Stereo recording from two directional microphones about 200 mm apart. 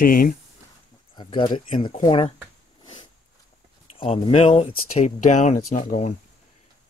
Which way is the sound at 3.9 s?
30° left (ahead or behind).